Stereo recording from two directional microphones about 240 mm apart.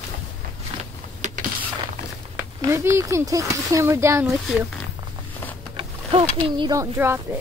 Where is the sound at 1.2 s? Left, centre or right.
Right.